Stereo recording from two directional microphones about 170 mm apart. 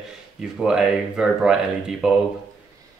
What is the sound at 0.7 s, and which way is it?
Speech, 5° right (ahead or behind).